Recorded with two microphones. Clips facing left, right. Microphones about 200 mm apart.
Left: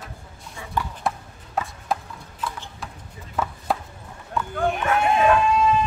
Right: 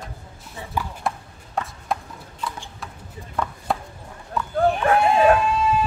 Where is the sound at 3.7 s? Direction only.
Centre (ahead or behind).